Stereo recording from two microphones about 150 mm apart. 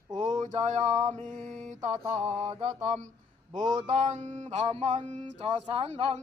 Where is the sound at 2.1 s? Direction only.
40° right (ahead or behind).